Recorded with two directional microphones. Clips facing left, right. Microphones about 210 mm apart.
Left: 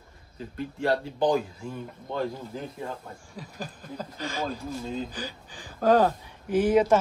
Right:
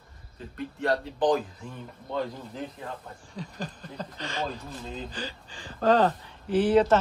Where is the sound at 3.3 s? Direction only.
10° left (ahead or behind).